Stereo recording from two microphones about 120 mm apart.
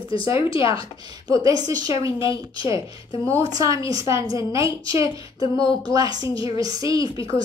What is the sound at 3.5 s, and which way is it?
A woman's voice, 25° right (ahead or behind).